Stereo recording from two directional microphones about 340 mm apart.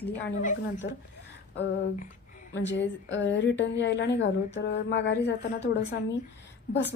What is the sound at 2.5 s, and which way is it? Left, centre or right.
Speech, left.